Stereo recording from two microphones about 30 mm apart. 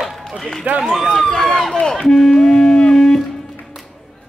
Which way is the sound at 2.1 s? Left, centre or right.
Centre.